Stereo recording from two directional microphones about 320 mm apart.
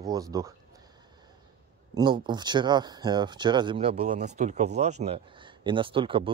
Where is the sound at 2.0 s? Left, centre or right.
Centre.